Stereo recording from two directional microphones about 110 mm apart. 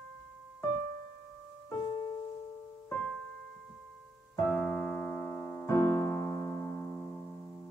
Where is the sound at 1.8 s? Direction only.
30° left (ahead or behind).